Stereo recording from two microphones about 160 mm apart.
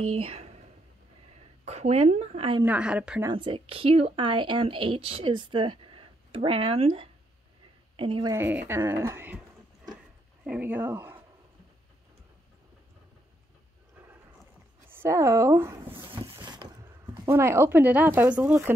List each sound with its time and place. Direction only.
0.0 s speech: 40° right (ahead or behind)
1.6 s speech: 45° right (ahead or behind)
2.6 s speech: 10° right (ahead or behind)
3.3 s a woman's voice: 30° right (ahead or behind)
8.3 s speech: 15° right (ahead or behind)
10.4 s speech: 10° right (ahead or behind)
14.9 s speech: 15° right (ahead or behind)
16.1 s vehicle: 25° right (ahead or behind)
17.3 s speech: 15° right (ahead or behind)